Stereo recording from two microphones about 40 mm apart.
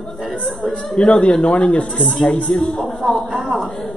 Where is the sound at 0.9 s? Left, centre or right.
Left.